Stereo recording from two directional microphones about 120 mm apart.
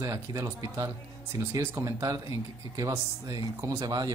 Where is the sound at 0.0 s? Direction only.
30° right (ahead or behind).